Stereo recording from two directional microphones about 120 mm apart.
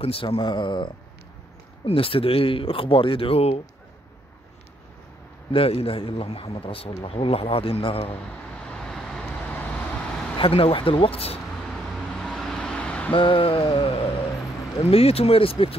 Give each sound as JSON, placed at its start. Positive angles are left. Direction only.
{"t": 0.0, "sound": "speech", "side_deg": 55}
{"t": 5.5, "sound": "speech", "side_deg": 50}
{"t": 8.6, "sound": "vehicle", "side_deg": 5}
{"t": 10.3, "sound": "speech", "side_deg": 50}
{"t": 11.7, "sound": "vehicle", "side_deg": 5}
{"t": 13.1, "sound": "speech", "side_deg": 45}